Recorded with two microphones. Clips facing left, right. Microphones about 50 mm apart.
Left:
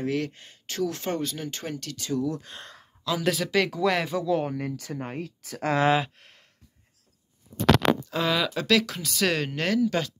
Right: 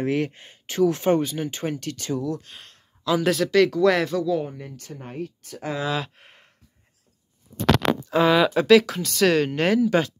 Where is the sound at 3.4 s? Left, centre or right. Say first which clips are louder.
Right 8 dB; centre.